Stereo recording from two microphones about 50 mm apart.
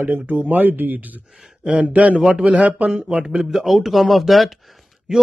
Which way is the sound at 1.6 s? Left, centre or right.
Right.